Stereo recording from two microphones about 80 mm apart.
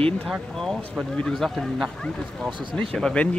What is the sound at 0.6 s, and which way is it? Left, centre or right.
Speech, centre.